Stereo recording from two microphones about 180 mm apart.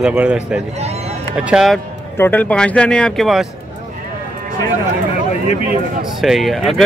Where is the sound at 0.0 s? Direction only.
10° right (ahead or behind).